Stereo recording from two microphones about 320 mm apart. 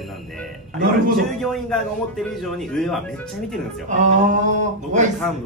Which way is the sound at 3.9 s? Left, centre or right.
Right.